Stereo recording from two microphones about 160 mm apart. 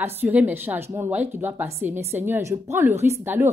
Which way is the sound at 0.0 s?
10° right (ahead or behind).